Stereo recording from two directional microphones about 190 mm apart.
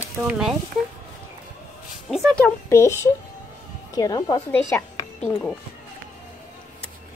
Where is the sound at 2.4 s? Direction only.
15° left (ahead or behind).